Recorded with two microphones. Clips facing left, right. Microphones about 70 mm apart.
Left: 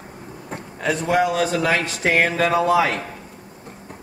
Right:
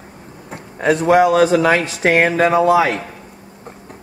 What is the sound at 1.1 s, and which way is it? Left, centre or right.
Speech, centre.